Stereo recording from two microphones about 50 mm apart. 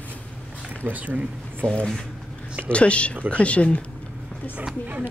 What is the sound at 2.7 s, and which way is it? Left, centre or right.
Speech, left.